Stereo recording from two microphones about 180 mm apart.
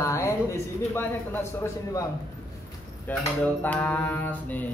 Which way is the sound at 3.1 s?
10° left (ahead or behind).